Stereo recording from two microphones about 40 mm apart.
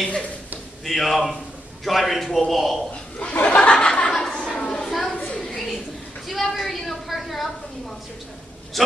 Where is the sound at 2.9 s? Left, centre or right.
Left.